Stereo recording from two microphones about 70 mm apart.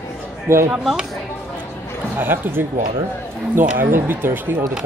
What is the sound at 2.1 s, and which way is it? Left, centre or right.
Speech, right.